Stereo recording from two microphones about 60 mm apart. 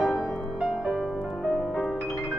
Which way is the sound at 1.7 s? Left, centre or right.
Centre.